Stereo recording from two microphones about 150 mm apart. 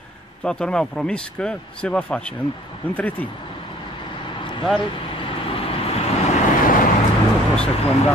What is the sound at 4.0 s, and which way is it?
Vehicle, 35° left (ahead or behind).